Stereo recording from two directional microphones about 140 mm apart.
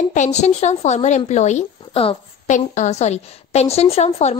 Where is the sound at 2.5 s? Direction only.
55° left (ahead or behind).